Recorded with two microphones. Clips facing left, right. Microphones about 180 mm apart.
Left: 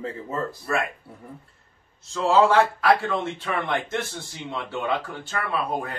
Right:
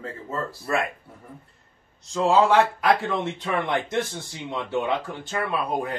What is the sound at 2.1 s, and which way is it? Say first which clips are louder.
A man's voice: even; 15° right (ahead or behind).